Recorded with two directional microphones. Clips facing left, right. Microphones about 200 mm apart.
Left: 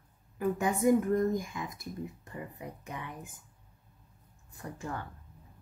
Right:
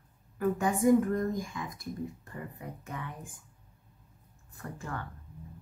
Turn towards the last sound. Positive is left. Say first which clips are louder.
# left 1 dB
turn(degrees=15)  # may be behind; listen again after turning